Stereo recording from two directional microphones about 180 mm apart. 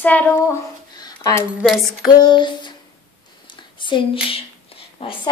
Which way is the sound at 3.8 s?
25° left (ahead or behind).